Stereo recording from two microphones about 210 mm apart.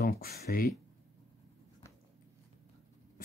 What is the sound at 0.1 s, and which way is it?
Speech, 45° left (ahead or behind).